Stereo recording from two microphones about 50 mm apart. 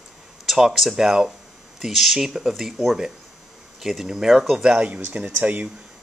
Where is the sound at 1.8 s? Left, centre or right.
Centre.